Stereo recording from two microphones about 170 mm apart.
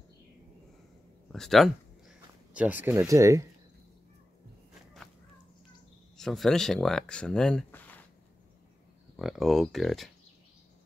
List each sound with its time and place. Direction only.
1.3 s a sound: centre (ahead or behind)
2.9 s speech: 20° right (ahead or behind)
6.1 s speech: centre (ahead or behind)
9.1 s speech: centre (ahead or behind)